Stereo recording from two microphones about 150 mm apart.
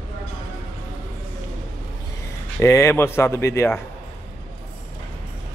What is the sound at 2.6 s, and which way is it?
Speech, 20° left (ahead or behind).